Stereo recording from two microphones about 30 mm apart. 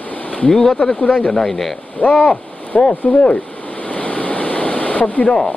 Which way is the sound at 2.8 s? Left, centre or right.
Left.